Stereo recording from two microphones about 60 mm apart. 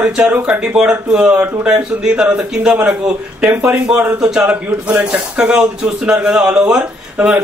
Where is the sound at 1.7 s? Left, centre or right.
Centre.